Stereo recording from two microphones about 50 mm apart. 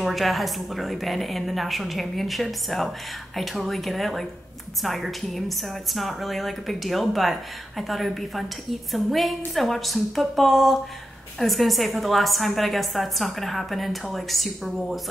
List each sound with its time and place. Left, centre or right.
0.0 s a woman's voice: centre